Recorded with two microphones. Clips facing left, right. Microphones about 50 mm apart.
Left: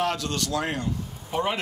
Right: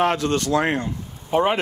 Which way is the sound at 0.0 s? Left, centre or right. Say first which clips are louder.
Right 7 dB; right.